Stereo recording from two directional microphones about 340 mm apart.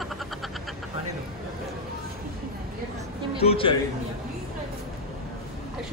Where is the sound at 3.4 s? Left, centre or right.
Centre.